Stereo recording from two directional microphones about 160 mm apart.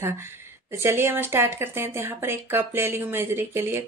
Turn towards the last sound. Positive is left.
turn(degrees=-15)  # may be behind; listen again after turning